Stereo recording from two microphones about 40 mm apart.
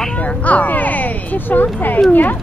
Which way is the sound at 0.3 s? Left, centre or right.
Left.